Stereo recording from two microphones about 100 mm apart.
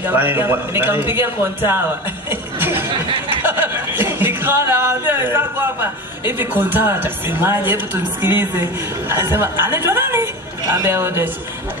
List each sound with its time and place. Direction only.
0.0 s a man's voice: 20° right (ahead or behind)
2.6 s a sound: 20° right (ahead or behind)
3.4 s a woman's voice: 20° right (ahead or behind)